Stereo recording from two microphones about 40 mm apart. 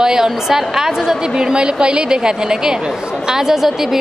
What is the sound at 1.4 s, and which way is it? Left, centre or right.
A woman's voice, centre.